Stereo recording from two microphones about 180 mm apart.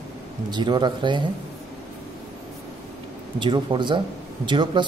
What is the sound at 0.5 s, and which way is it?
Speech, 25° right (ahead or behind).